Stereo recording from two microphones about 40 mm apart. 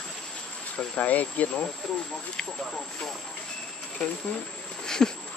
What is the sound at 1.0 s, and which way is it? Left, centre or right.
Speech, left.